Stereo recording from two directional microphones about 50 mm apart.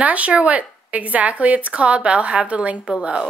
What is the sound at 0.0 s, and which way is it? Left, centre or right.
Speech, right.